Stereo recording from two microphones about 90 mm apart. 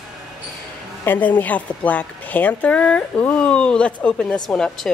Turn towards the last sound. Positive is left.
turn(degrees=10)  # may be behind; listen again after turning